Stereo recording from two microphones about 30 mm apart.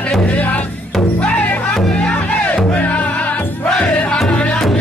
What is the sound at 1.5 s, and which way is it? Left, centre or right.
Music, left.